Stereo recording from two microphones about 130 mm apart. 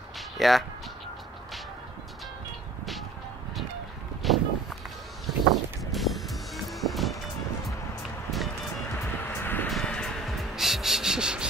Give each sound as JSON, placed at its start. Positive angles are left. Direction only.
{"t": 0.4, "sound": "speech", "side_deg": 0}
{"t": 4.2, "sound": "walk", "side_deg": 0}
{"t": 5.2, "sound": "music", "side_deg": 0}
{"t": 8.9, "sound": "vehicle", "side_deg": 15}
{"t": 9.7, "sound": "music", "side_deg": 5}